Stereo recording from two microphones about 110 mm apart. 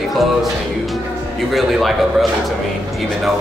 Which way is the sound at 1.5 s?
Centre (ahead or behind).